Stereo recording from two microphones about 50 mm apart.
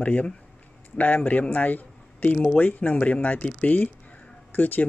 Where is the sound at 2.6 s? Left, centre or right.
Left.